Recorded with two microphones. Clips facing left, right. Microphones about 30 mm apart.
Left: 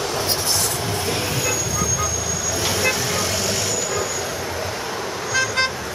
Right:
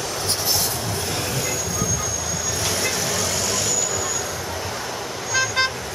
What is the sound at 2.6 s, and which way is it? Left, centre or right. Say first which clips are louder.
Vehicle: left 3 dB; centre.